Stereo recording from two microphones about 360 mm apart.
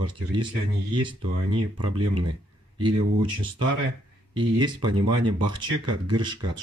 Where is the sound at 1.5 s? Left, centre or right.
Right.